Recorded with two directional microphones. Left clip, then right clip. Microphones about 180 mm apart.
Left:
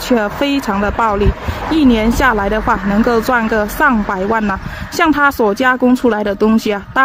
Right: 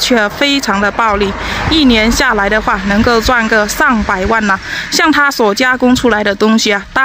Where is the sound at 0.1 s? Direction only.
5° left (ahead or behind).